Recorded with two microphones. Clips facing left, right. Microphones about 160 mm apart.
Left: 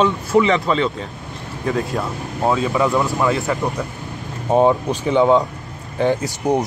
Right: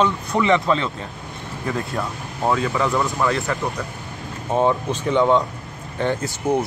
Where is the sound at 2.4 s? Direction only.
20° left (ahead or behind).